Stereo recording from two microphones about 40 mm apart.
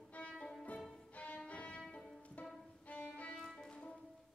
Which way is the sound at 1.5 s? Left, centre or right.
Left.